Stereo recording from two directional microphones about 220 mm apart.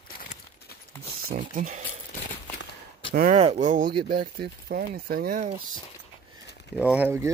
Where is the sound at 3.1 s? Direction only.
40° right (ahead or behind).